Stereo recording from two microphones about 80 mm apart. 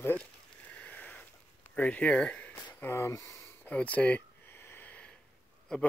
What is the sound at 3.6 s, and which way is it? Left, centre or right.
Speech, centre.